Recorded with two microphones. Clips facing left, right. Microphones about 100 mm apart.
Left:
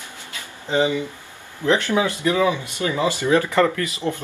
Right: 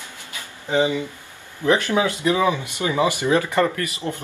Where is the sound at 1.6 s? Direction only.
15° right (ahead or behind).